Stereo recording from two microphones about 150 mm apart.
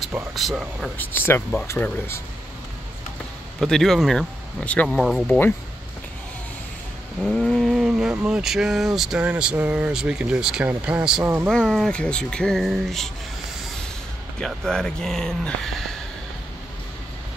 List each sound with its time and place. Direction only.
0.3 s speech: centre (ahead or behind)
0.9 s speech: 15° left (ahead or behind)
3.6 s speech: 5° left (ahead or behind)
7.2 s speech: 5° left (ahead or behind); by 11.5 s 15° right (ahead or behind)
11.5 s speech: centre (ahead or behind)
14.4 s speech: 5° left (ahead or behind)